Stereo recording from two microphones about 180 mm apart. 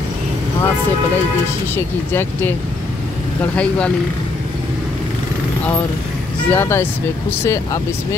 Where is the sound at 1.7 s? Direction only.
10° left (ahead or behind).